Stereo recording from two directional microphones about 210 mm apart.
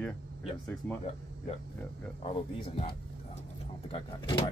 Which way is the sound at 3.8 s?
25° left (ahead or behind).